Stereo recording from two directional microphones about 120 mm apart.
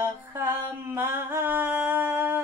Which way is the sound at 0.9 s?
20° right (ahead or behind).